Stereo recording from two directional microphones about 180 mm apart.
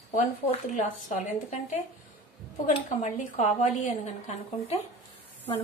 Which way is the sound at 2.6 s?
40° left (ahead or behind).